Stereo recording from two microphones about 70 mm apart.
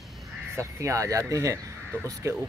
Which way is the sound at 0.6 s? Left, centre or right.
Right.